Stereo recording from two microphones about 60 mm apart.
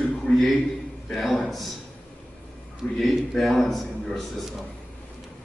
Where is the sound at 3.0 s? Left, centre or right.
Centre.